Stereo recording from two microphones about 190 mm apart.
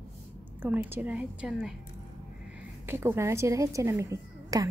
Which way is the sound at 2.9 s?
10° right (ahead or behind).